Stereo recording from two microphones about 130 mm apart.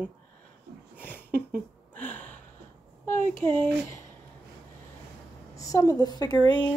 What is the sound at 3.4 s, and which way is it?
Speech, 15° left (ahead or behind).